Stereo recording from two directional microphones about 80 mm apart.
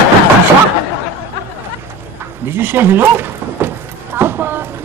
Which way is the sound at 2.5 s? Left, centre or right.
Right.